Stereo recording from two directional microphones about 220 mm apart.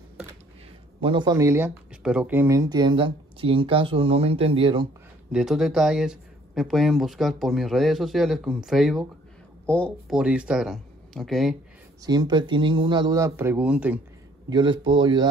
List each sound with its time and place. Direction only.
1.0 s speech: 20° right (ahead or behind)
5.3 s speech: centre (ahead or behind)
12.0 s speech: 20° right (ahead or behind)
14.5 s speech: 20° right (ahead or behind)